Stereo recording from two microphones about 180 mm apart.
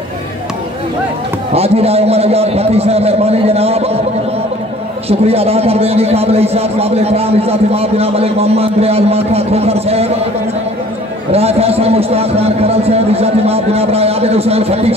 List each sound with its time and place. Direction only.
1.5 s a man's voice: 35° right (ahead or behind)
5.0 s a man's voice: 35° right (ahead or behind)
11.3 s a man's voice: 35° right (ahead or behind)